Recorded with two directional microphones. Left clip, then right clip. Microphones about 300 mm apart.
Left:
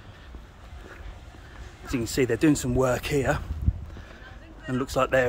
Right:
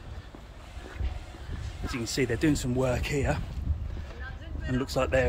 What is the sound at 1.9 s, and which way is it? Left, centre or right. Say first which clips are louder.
Speech: left 4 dB; centre.